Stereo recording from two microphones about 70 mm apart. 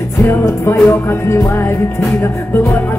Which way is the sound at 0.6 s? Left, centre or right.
Left.